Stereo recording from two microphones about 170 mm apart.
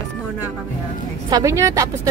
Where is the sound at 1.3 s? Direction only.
20° right (ahead or behind).